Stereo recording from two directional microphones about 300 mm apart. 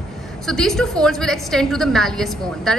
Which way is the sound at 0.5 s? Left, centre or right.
Centre.